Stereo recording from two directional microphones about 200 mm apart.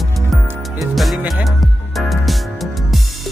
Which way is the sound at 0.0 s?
Centre (ahead or behind).